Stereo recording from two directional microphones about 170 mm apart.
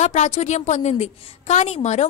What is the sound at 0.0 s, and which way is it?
A woman's voice, 45° left (ahead or behind).